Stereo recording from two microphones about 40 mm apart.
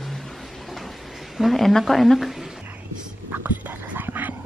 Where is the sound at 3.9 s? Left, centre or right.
Right.